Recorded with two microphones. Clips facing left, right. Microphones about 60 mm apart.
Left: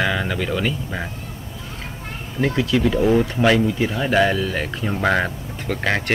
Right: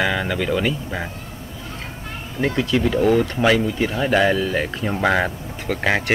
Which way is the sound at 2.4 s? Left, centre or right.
Centre.